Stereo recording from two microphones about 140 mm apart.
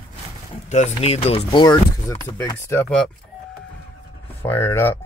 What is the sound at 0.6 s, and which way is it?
Speech, 55° left (ahead or behind).